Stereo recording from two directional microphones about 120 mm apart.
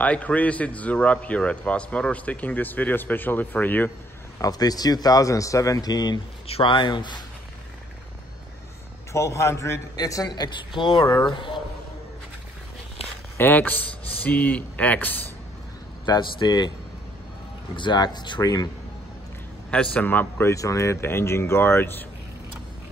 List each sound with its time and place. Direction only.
0.0 s a man's voice: 10° left (ahead or behind)
4.4 s a man's voice: 30° left (ahead or behind)
6.4 s speech: 50° left (ahead or behind)
9.1 s a man's voice: 25° left (ahead or behind); by 11.0 s 45° left (ahead or behind)
11.0 s a man's voice: 35° left (ahead or behind)
13.4 s a man's voice: 15° left (ahead or behind)
16.1 s a man's voice: 40° left (ahead or behind)
17.7 s a man's voice: 40° left (ahead or behind)
19.7 s speech: 10° left (ahead or behind)